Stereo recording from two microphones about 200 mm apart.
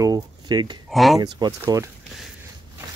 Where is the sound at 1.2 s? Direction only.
20° right (ahead or behind).